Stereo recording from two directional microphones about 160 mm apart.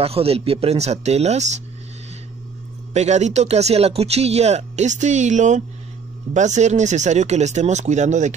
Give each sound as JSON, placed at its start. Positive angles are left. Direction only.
{"t": 0.0, "sound": "speech", "side_deg": -40}
{"t": 2.9, "sound": "speech", "side_deg": -45}